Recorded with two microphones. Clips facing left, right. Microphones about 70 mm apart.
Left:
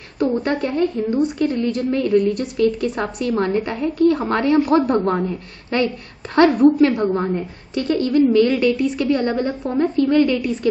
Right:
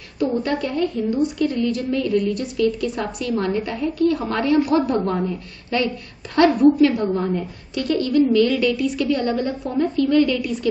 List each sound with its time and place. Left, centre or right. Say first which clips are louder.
0.4 s a woman's voice: left 2 dB; left
5.1 s a woman's voice: left 2 dB; left